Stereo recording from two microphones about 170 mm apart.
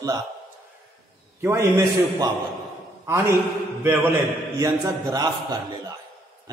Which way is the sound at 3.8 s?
10° right (ahead or behind).